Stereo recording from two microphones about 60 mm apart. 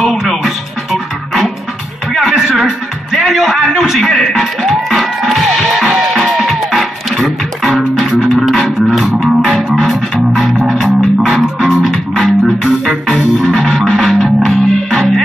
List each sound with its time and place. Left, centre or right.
0.0 s music: centre